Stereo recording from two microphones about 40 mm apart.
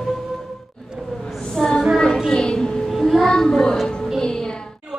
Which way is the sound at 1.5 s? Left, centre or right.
Centre.